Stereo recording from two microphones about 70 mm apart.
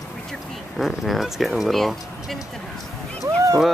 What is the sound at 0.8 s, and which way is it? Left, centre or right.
Speech, centre.